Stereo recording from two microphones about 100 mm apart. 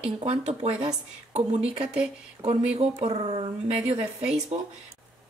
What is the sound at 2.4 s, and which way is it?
A woman's voice, 90° right.